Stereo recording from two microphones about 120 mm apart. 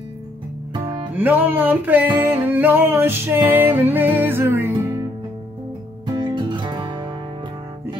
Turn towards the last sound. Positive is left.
turn(degrees=-40)  # may be behind; listen again after turning